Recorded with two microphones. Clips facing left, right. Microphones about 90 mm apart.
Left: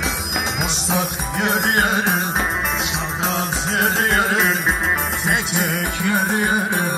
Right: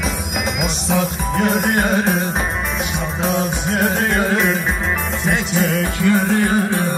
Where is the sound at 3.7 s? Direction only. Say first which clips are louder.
Even; 20° left (ahead or behind).